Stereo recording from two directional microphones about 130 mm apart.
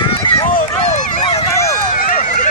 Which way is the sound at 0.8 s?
65° left (ahead or behind).